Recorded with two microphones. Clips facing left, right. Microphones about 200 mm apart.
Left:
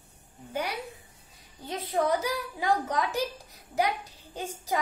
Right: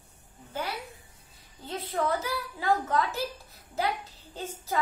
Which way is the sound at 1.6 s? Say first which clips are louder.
Left 2 dB; 15° left (ahead or behind).